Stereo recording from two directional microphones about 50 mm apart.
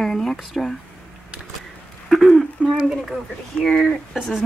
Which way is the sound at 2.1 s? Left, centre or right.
Centre.